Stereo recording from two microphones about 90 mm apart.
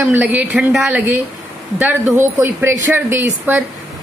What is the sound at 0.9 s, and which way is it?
Speech, 20° right (ahead or behind).